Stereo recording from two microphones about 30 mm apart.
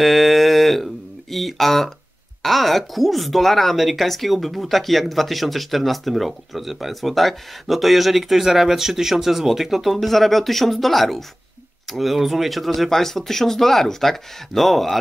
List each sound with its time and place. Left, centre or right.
0.0 s a sound: centre
1.3 s speech: centre
9.9 s speech: centre